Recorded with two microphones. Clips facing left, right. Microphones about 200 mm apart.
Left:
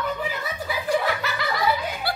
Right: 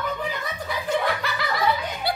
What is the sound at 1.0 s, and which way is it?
Snicker, centre (ahead or behind).